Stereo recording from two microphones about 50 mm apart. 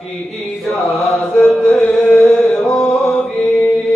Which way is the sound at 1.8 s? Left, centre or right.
Left.